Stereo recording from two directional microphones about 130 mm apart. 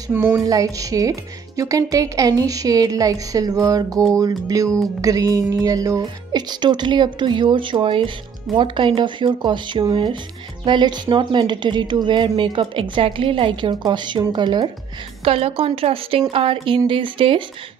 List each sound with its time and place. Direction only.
0.1 s a woman's voice: 15° right (ahead or behind); by 14.7 s 35° right (ahead or behind)
15.2 s speech: 45° right (ahead or behind)